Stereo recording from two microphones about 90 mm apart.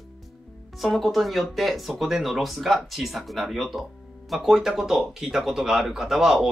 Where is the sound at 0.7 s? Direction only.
Centre (ahead or behind).